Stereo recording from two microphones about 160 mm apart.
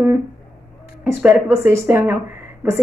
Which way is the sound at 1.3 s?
15° right (ahead or behind).